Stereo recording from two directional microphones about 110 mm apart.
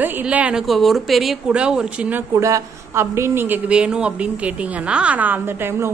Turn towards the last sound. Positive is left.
turn(degrees=-20)  # may be behind; listen again after turning